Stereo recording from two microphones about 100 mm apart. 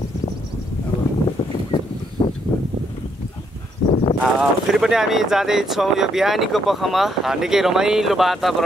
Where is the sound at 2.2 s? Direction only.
35° left (ahead or behind).